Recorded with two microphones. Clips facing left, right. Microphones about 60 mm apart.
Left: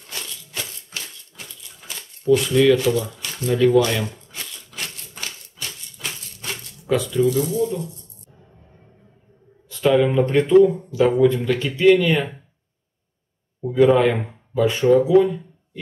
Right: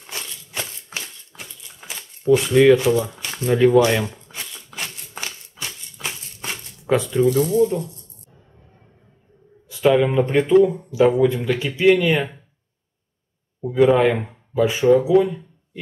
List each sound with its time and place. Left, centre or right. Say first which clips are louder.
0.0 s a sound: right 1 dB; right
1.9 s speech: right 1 dB; centre
4.0 s shuffling cards: right 1 dB; centre
5.1 s a sound: right 2 dB; centre
7.2 s speech: right 3 dB; right
9.7 s a man's voice: right 1 dB; centre
13.6 s speech: even; centre